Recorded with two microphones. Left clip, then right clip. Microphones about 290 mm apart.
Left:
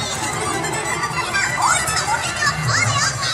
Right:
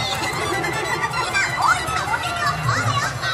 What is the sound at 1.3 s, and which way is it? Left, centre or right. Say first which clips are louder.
Music: left 1 dB; right.